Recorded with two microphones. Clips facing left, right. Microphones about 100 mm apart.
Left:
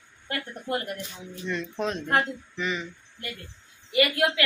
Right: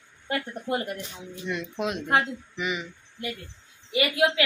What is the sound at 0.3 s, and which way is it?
Speech, 20° right (ahead or behind).